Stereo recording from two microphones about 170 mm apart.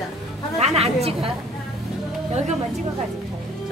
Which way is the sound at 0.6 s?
40° right (ahead or behind).